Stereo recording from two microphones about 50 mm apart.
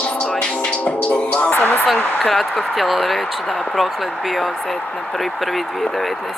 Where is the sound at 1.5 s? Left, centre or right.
Left.